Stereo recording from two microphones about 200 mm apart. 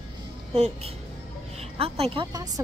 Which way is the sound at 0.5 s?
30° right (ahead or behind).